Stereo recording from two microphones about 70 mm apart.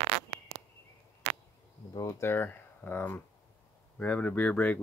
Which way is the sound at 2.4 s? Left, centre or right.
Left.